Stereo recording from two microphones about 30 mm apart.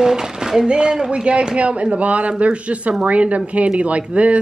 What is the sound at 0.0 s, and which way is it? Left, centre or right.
A woman's voice, right.